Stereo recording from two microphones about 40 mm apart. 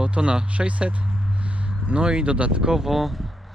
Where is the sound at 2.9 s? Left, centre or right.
Centre.